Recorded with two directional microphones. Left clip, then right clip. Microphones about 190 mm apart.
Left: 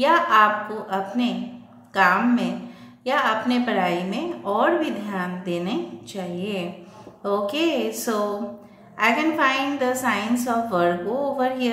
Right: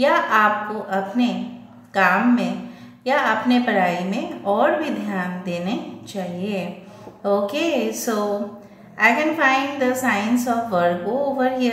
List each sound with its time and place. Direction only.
0.0 s a woman's voice: 15° left (ahead or behind)